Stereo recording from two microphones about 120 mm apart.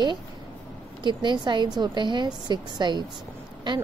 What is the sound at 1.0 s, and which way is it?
A woman's voice, 40° right (ahead or behind).